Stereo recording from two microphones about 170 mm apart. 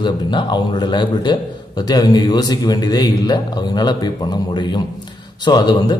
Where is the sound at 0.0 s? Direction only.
25° left (ahead or behind).